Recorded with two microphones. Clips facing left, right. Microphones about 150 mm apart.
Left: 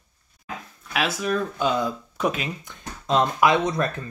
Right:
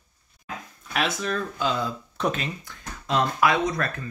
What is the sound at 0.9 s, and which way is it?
Speech, 5° left (ahead or behind).